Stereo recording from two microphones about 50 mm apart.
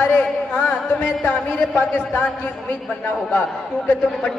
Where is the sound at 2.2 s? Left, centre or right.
Left.